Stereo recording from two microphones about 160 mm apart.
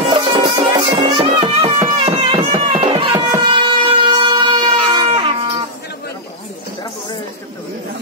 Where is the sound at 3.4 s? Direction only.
30° right (ahead or behind).